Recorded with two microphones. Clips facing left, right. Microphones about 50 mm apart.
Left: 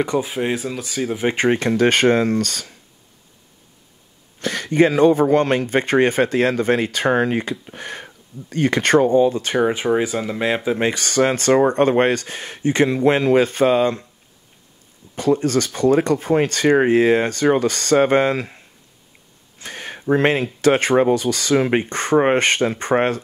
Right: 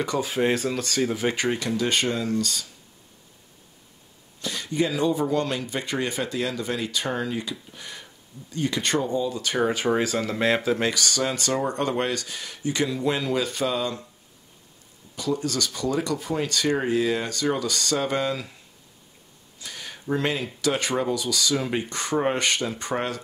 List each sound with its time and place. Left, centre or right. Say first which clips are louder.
0.0 s speech: left 6 dB; left
0.3 s speech: left 1 dB; centre
1.3 s speech: left 8 dB; left
4.4 s speech: left 9 dB; left
9.6 s speech: left 4 dB; left
15.1 s speech: left 9 dB; left
19.6 s a sound: left 8 dB; left
20.6 s speech: left 10 dB; left